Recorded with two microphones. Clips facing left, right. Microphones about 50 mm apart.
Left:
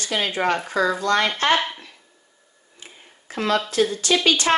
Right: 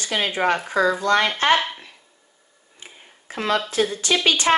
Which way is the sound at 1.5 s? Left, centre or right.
Centre.